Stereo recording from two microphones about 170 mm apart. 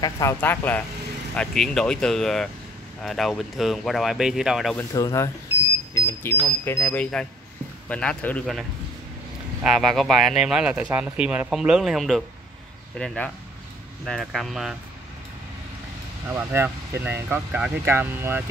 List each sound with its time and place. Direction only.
0.0 s speech: 15° left (ahead or behind); by 4.7 s centre (ahead or behind)
4.7 s speech: 15° left (ahead or behind); by 14.8 s centre (ahead or behind)
16.3 s speech: 15° right (ahead or behind)